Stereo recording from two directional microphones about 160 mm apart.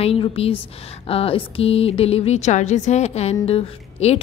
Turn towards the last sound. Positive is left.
turn(degrees=40)  # may be behind; listen again after turning